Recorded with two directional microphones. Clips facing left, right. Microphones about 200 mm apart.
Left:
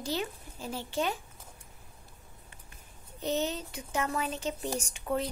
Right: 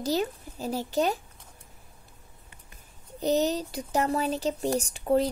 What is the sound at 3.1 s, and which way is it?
Speech, 40° right (ahead or behind).